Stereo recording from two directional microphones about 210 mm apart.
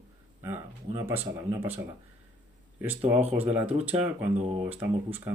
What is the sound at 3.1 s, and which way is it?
Speech, 10° right (ahead or behind).